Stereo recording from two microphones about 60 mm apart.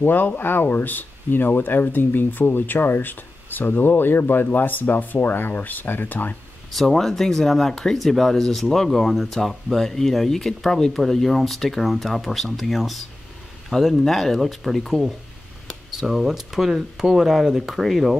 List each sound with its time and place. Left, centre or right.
0.0 s speech: left
6.7 s speech: centre